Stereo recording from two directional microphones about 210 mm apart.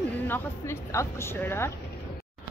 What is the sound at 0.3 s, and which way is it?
A woman's voice, 10° left (ahead or behind).